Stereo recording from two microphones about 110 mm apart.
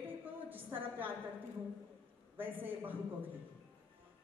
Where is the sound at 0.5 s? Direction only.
15° right (ahead or behind).